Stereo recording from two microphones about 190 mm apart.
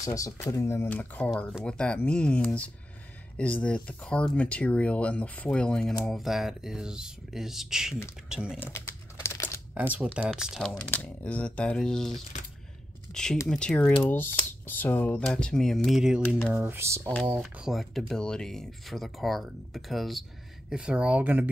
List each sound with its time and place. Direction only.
0.0 s speech: 15° left (ahead or behind); by 8.5 s 5° right (ahead or behind)
8.5 s typing: 15° left (ahead or behind)
9.8 s speech: 5° right (ahead or behind)
16.6 s speech: 15° right (ahead or behind)